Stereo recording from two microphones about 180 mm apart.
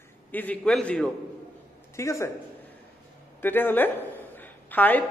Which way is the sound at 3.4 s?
10° left (ahead or behind).